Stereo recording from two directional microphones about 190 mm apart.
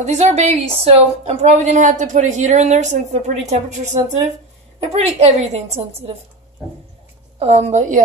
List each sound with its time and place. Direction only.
0.0 s a woman's voice: 35° right (ahead or behind)
7.3 s a woman's voice: 35° right (ahead or behind)